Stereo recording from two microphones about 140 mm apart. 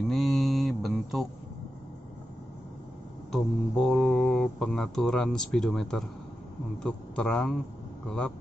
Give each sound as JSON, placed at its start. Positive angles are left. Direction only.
{"t": 0.1, "sound": "mantra", "side_deg": 0}
{"t": 3.3, "sound": "a man's voice", "side_deg": 5}